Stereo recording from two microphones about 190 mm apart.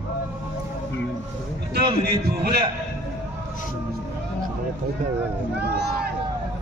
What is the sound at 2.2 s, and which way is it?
Speech, 55° right (ahead or behind).